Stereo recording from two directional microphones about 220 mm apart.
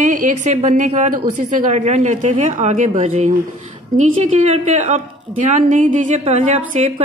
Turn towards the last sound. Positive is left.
turn(degrees=-30)  # may be behind; listen again after turning